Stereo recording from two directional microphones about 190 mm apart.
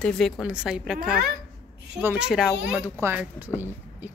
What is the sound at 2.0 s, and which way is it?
A woman's voice, 5° right (ahead or behind).